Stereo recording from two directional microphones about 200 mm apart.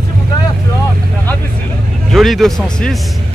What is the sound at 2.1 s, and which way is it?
Speech, centre (ahead or behind).